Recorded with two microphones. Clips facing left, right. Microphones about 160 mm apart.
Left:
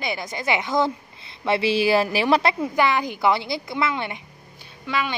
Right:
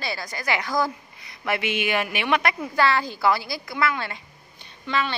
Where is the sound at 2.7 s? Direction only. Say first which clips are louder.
Left 1 dB; 20° left (ahead or behind).